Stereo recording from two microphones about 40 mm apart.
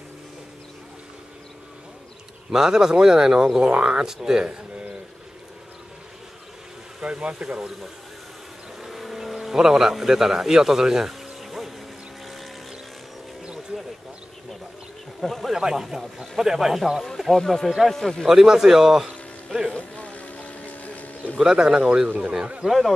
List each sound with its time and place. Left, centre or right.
2.5 s speech: centre
7.0 s speech: right
7.4 s speech: centre
8.8 s bee: centre
15.1 s speech: centre
15.5 s speech: centre
17.3 s speech: centre
18.2 s speech: centre
19.8 s a sound: left
21.4 s speech: centre
22.7 s speech: centre